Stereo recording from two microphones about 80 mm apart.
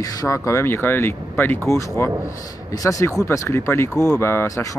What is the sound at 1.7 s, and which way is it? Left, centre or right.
A man's voice, left.